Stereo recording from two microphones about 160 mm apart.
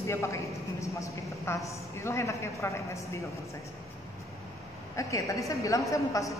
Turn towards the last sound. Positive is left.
turn(degrees=20)  # may be behind; listen again after turning